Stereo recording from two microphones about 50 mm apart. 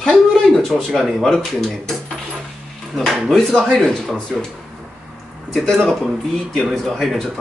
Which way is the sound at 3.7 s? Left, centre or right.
Centre.